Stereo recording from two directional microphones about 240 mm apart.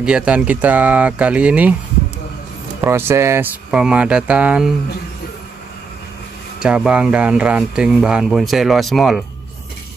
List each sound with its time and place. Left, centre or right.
0.0 s speech: centre
2.8 s speech: centre
6.6 s speech: centre